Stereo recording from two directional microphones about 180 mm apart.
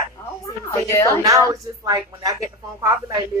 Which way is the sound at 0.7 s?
15° left (ahead or behind).